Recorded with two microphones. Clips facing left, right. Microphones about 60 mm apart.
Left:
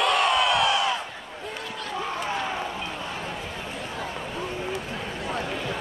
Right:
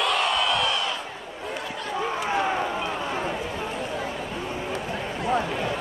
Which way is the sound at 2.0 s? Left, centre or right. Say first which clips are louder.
Right 4 dB; centre.